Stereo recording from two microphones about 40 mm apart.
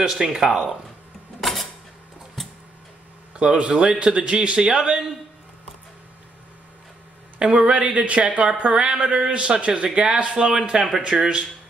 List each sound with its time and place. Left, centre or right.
0.0 s speech: centre
1.4 s a sound: centre
3.3 s a man's voice: right
7.3 s a man's voice: right
10.7 s a man's voice: centre